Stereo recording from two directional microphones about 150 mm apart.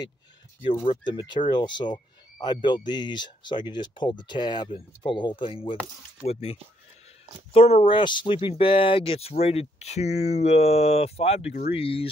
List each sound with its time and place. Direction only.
0.8 s speech: 30° left (ahead or behind)
7.9 s speech: 30° left (ahead or behind)